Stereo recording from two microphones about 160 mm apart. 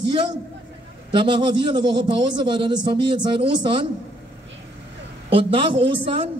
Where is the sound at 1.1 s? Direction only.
30° right (ahead or behind).